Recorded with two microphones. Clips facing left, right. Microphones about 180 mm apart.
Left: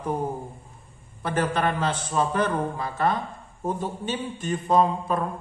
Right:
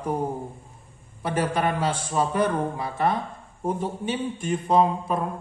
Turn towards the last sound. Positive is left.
turn(degrees=-20)  # may be behind; listen again after turning